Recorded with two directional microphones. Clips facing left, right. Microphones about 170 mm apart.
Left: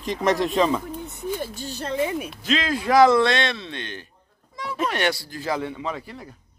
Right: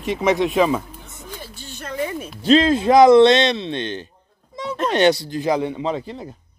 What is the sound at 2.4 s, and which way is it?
Speech, 30° right (ahead or behind).